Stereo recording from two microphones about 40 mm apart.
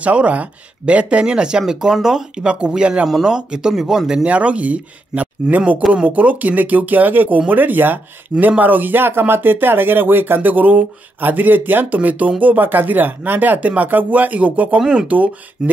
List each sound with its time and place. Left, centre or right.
0.0 s speech: right; by 2.4 s centre
2.4 s speech: right
4.3 s speech: right